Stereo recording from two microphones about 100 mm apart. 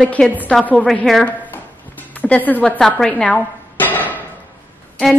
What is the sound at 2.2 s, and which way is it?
Speech, 15° left (ahead or behind).